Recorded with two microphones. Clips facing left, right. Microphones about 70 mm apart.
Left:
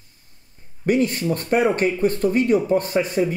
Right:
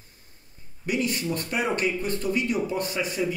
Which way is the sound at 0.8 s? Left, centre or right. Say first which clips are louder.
Left 7 dB; left.